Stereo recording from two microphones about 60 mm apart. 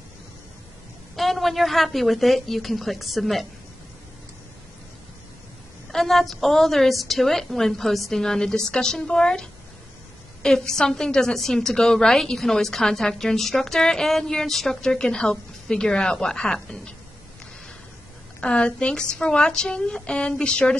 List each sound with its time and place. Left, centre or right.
1.1 s a woman's voice: centre
5.9 s a woman's voice: centre
18.4 s a woman's voice: centre